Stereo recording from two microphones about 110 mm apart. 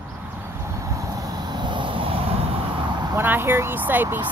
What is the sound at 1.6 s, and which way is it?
Vehicle, 45° right (ahead or behind).